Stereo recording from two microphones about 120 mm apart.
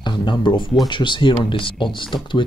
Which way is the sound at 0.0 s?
40° left (ahead or behind).